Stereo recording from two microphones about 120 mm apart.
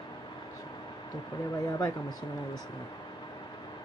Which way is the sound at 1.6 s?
30° left (ahead or behind).